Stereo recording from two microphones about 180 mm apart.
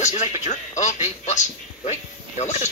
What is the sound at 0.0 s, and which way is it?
A man's voice, 40° left (ahead or behind).